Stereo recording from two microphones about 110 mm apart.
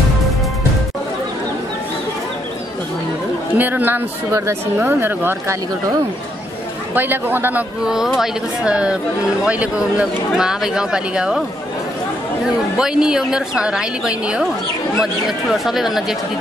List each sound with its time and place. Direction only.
3.5 s speech: 15° right (ahead or behind)
6.9 s speech: 20° right (ahead or behind)
7.8 s speech: 5° right (ahead or behind)
12.7 s speech: 5° right (ahead or behind)